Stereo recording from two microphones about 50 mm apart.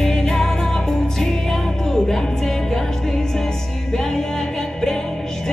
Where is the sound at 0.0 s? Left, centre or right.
Centre.